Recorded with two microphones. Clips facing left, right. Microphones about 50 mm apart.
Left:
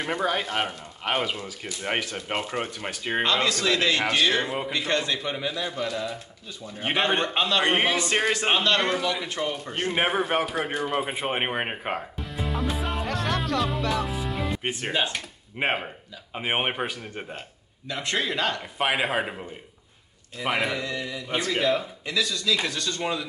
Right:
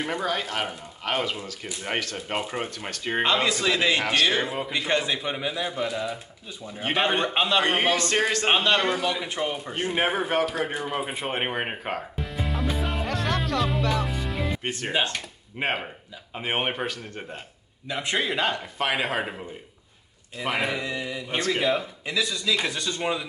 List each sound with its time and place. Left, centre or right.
0.2 s speech: centre
3.3 s a man's voice: centre
4.0 s a man's voice: centre
4.3 s a man's voice: centre
7.3 s a man's voice: centre
7.7 s speech: centre
8.5 s a man's voice: centre
10.3 s speech: centre
12.2 s music: centre
14.6 s speech: centre
17.8 s a man's voice: centre
18.8 s speech: centre
20.5 s a man's voice: centre